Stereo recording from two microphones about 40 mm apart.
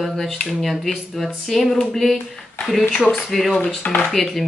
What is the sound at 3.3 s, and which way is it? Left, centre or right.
Speech, centre.